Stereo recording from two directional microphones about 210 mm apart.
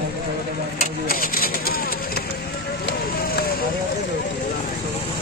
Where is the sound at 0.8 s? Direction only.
45° left (ahead or behind).